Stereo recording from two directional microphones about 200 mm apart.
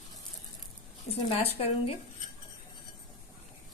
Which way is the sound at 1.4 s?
30° left (ahead or behind).